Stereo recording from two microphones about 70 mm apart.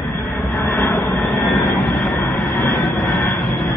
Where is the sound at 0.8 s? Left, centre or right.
Left.